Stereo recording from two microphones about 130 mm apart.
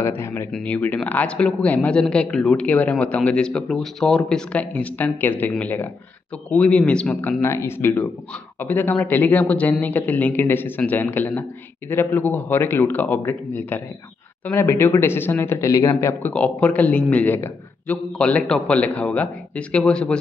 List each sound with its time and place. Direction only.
0.0 s a man's voice: 20° left (ahead or behind)
0.5 s a man's voice: 5° left (ahead or behind)